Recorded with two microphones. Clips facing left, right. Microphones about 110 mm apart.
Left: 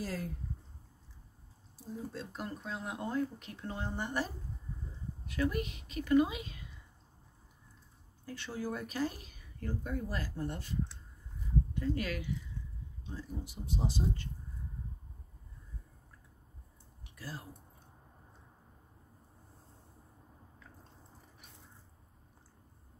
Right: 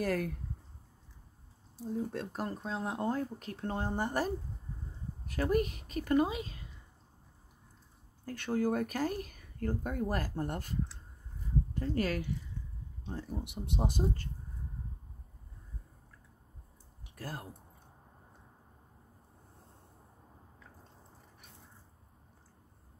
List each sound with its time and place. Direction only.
0.0 s speech: 60° right (ahead or behind)
2.3 s speech: 35° right (ahead or behind)
8.3 s speech: 50° right (ahead or behind)
13.0 s speech: 65° right (ahead or behind); by 14.3 s 45° right (ahead or behind)
17.1 s speech: 50° right (ahead or behind)